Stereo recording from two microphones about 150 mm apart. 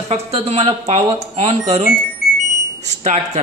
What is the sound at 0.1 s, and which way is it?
A man's voice, 45° right (ahead or behind).